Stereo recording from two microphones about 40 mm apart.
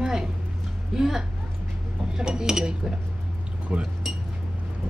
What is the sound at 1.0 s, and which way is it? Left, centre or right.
Speech, centre.